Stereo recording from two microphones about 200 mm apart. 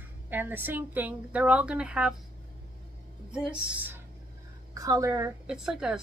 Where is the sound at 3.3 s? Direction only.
5° right (ahead or behind).